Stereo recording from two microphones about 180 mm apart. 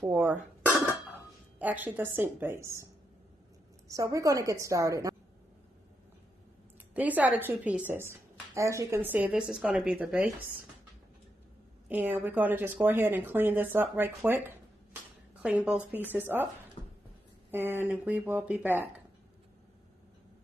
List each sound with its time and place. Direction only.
0.1 s a woman's voice: 10° right (ahead or behind)
3.9 s a woman's voice: 20° right (ahead or behind)
6.9 s a woman's voice: 10° right (ahead or behind)
11.9 s a woman's voice: 10° right (ahead or behind)
15.9 s a woman's voice: 10° right (ahead or behind)
17.5 s a woman's voice: 10° right (ahead or behind)